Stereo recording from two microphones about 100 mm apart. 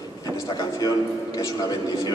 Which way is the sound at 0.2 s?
40° left (ahead or behind).